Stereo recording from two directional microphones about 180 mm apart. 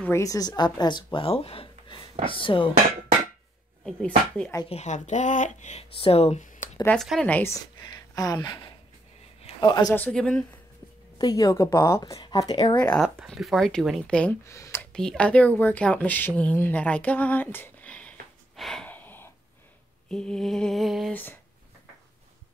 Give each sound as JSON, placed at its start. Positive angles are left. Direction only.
{"t": 0.0, "sound": "speech", "side_deg": 15}
{"t": 3.8, "sound": "speech", "side_deg": 5}
{"t": 4.6, "sound": "speech", "side_deg": 40}
{"t": 6.8, "sound": "speech", "side_deg": 5}
{"t": 8.1, "sound": "a woman's voice", "side_deg": 20}
{"t": 9.9, "sound": "speech", "side_deg": 5}
{"t": 11.1, "sound": "speech", "side_deg": 20}
{"t": 12.7, "sound": "speech", "side_deg": 10}
{"t": 14.4, "sound": "speech", "side_deg": 15}
{"t": 18.6, "sound": "a sound", "side_deg": 0}
{"t": 20.1, "sound": "speech", "side_deg": 5}